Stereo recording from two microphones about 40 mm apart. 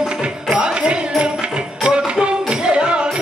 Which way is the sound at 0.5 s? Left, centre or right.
Right.